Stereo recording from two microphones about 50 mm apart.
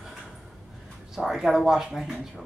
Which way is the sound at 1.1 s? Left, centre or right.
Centre.